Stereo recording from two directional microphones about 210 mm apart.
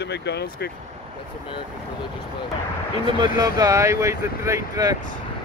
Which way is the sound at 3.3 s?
20° right (ahead or behind).